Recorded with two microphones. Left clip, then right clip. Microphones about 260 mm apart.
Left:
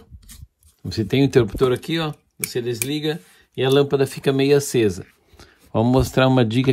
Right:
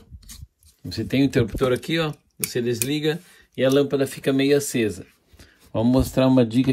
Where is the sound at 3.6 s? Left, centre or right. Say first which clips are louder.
Left 2 dB; centre.